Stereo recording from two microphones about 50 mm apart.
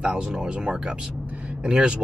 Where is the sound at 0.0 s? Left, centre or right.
Centre.